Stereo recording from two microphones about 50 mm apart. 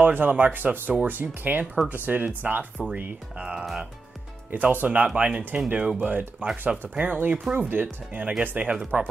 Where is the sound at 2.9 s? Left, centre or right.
Right.